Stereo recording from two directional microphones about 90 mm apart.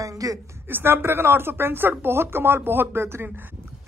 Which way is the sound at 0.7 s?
25° right (ahead or behind).